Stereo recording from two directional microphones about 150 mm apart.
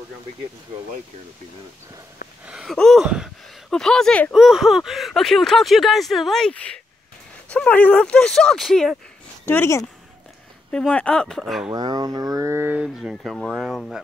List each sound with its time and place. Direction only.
2.4 s speech: 5° right (ahead or behind)
9.5 s speech: 15° left (ahead or behind)
10.7 s speech: 5° left (ahead or behind)
11.7 s speech: 25° right (ahead or behind); by 14.0 s centre (ahead or behind)